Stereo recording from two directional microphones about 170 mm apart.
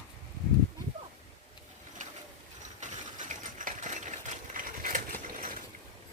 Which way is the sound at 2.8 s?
45° right (ahead or behind).